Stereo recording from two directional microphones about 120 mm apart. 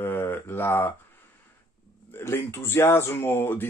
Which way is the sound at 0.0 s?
15° left (ahead or behind).